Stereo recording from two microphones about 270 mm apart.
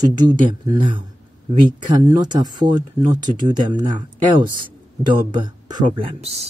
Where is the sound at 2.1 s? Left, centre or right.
Centre.